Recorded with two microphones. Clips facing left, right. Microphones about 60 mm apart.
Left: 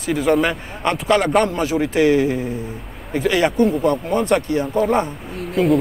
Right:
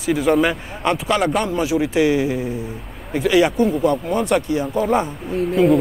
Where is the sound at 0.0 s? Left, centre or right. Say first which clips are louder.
Right 1 dB; centre.